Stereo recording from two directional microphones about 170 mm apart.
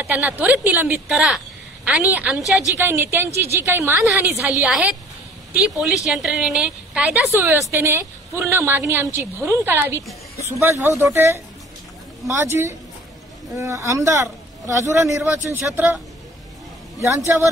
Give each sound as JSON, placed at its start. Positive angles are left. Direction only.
{"t": 0.1, "sound": "a woman's voice", "side_deg": -10}
{"t": 2.8, "sound": "a woman's voice", "side_deg": -15}
{"t": 15.2, "sound": "a woman's voice", "side_deg": -5}
{"t": 17.3, "sound": "a woman's voice", "side_deg": -10}